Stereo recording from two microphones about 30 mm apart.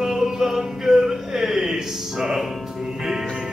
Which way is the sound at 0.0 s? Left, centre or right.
Centre.